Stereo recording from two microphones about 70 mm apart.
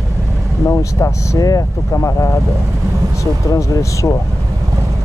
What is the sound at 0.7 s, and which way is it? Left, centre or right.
Speech, left.